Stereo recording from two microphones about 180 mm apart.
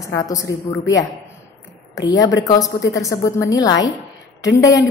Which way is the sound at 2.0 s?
20° left (ahead or behind).